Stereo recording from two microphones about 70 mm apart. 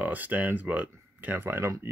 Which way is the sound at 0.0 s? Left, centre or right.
Right.